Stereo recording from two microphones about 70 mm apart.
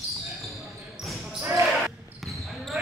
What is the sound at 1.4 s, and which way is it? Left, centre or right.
Basketball bounce, right.